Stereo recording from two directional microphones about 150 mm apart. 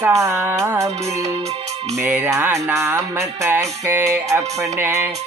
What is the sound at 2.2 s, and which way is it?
Music, 20° right (ahead or behind).